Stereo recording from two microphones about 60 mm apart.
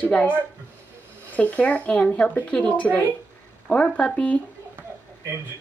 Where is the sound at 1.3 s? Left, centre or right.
Left.